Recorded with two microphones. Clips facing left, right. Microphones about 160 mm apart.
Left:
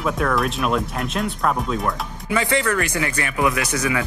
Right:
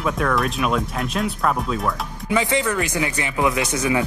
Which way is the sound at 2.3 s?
15° right (ahead or behind).